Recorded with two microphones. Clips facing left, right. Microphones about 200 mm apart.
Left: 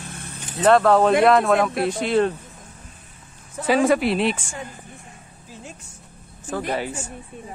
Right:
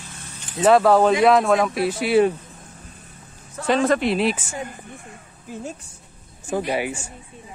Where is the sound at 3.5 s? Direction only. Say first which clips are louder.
Left 1 dB; 10° left (ahead or behind).